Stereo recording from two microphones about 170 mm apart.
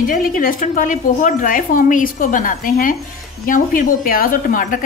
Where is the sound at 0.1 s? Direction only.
55° left (ahead or behind).